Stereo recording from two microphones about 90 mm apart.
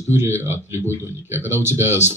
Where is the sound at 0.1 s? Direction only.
25° right (ahead or behind).